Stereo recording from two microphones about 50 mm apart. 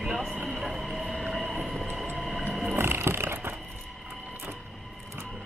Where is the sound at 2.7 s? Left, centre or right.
Right.